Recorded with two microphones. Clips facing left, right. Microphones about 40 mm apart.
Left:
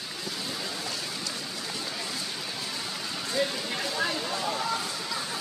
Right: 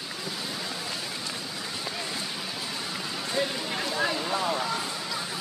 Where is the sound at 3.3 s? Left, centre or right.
Centre.